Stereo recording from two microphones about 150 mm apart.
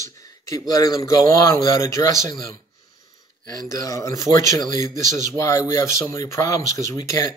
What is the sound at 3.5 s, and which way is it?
Speech, 20° left (ahead or behind).